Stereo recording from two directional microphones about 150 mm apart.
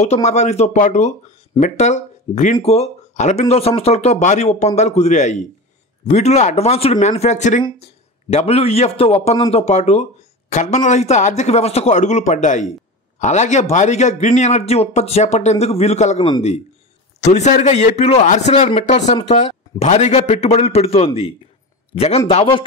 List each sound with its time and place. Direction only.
0.0 s a man's voice: 50° left (ahead or behind)